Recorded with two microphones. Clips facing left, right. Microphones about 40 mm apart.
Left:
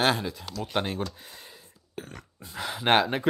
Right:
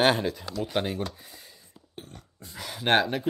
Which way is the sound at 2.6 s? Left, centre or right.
Centre.